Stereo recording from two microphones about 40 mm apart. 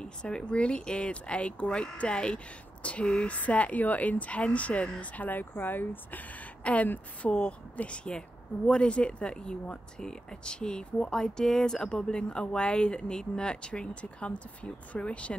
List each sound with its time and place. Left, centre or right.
0.0 s speech: left
3.3 s a woman's voice: left
5.2 s speech: left
6.6 s a woman's voice: left